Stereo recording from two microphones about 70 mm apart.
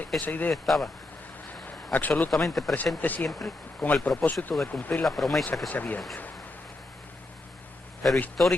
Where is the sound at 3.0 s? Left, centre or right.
Left.